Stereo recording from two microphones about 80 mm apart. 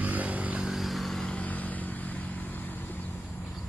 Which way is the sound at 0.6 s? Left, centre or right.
Centre.